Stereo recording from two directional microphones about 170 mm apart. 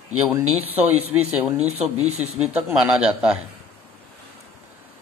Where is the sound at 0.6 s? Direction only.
35° right (ahead or behind).